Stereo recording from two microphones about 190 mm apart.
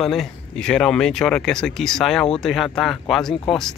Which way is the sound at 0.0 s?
Centre (ahead or behind).